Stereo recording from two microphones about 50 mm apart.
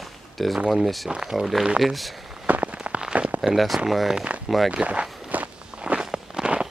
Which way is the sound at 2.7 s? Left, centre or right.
Centre.